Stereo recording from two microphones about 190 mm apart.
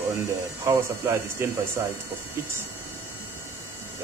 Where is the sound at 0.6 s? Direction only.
15° right (ahead or behind).